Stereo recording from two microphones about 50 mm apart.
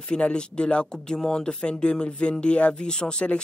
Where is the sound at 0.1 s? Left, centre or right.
Centre.